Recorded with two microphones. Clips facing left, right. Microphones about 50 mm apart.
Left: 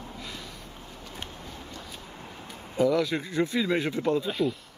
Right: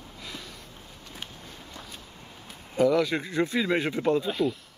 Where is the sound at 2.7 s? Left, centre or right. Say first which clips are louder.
Right 1 dB; centre.